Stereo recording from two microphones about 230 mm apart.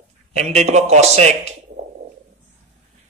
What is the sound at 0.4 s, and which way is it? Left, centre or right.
Speech, right.